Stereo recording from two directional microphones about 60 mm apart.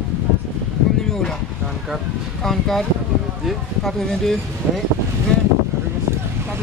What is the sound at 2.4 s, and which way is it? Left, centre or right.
Speech, centre.